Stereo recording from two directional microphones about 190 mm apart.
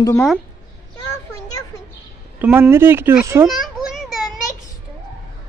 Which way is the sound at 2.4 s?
10° right (ahead or behind).